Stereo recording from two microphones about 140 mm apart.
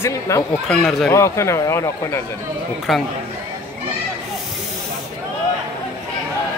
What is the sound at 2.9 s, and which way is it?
Speech, centre (ahead or behind).